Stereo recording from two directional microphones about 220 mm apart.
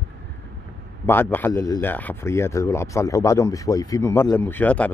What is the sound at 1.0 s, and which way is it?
Speech, 10° left (ahead or behind).